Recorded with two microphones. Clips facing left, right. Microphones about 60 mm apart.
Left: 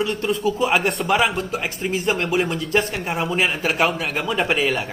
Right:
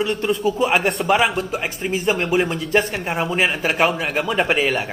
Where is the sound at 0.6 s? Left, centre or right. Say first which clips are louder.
Right 1 dB; right.